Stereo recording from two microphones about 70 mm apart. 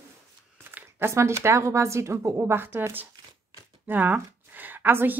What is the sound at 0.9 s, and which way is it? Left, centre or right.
A woman's voice, right.